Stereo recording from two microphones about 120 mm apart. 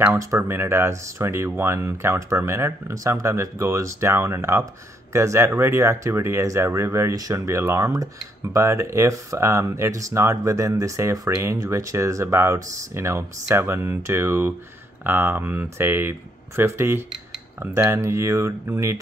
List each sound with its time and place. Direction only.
0.2 s speech: 25° right (ahead or behind)